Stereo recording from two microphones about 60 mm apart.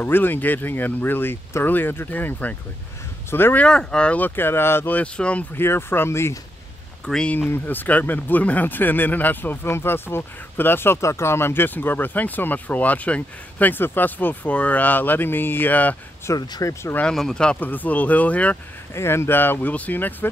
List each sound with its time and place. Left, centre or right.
0.0 s speech: left
3.5 s speech: centre
4.4 s speech: left
4.8 s speech: left
5.6 s speech: left
7.3 s speech: left
11.0 s speech: left
16.3 s speech: left
17.1 s speech: centre
17.6 s speech: left
18.9 s speech: left